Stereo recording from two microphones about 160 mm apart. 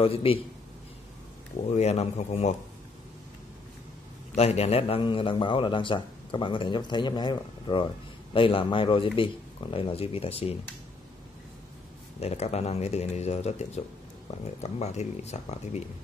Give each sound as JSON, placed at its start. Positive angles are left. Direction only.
{"t": 0.0, "sound": "a man's voice", "side_deg": 35}
{"t": 1.7, "sound": "a man's voice", "side_deg": 40}
{"t": 4.4, "sound": "a man's voice", "side_deg": 40}
{"t": 12.2, "sound": "a man's voice", "side_deg": 40}